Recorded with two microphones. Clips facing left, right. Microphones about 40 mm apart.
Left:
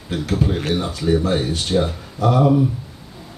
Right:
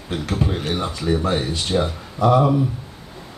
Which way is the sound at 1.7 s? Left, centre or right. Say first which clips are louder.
Left 2 dB; centre.